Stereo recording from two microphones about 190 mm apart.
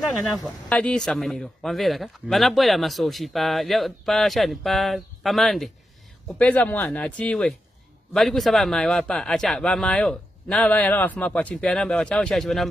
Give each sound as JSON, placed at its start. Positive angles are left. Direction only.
{"t": 0.7, "sound": "a man's voice", "side_deg": 5}